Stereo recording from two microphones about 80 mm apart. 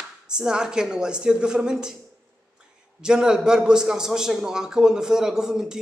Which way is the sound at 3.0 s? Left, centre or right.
Centre.